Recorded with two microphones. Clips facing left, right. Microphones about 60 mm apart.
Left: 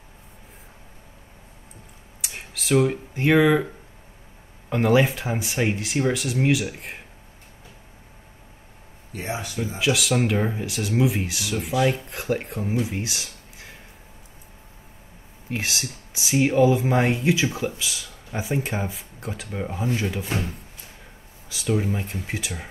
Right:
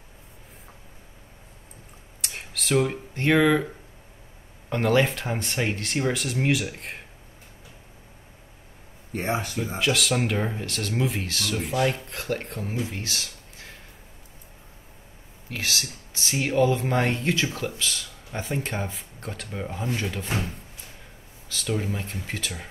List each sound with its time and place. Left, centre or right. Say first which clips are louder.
2.2 s speech: left 1 dB; centre
4.6 s speech: left 2 dB; centre
9.1 s speech: right 3 dB; right
9.8 s speech: left 2 dB; centre
15.5 s speech: left 2 dB; left
16.2 s speech: left 4 dB; centre
21.5 s speech: left 4 dB; centre